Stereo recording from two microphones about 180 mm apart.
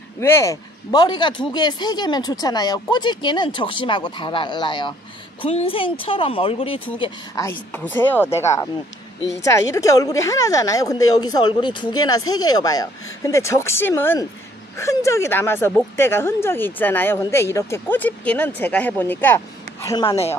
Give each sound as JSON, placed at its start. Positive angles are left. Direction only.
{"t": 0.2, "sound": "speech", "side_deg": 15}
{"t": 7.0, "sound": "speech", "side_deg": 20}